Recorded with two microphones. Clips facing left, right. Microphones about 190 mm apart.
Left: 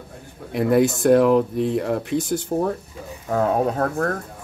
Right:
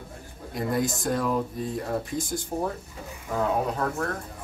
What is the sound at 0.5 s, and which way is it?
Speech, 70° left (ahead or behind).